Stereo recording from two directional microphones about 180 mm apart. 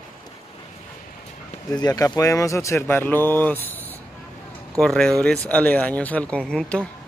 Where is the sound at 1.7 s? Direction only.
20° left (ahead or behind).